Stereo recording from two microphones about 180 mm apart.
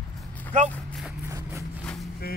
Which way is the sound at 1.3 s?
15° right (ahead or behind).